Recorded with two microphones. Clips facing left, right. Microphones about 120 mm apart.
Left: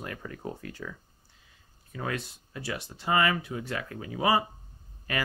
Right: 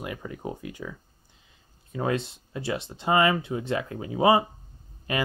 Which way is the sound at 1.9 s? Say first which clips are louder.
Right 7 dB; 25° right (ahead or behind).